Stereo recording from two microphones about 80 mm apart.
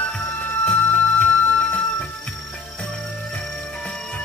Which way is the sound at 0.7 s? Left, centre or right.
Centre.